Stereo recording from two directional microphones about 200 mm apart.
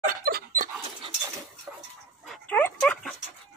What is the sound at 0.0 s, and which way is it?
Dog, 45° right (ahead or behind).